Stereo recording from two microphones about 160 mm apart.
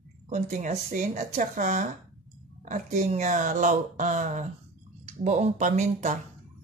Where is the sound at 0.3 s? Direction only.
50° right (ahead or behind).